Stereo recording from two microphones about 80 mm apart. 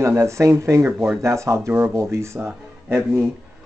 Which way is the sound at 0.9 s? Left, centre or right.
Centre.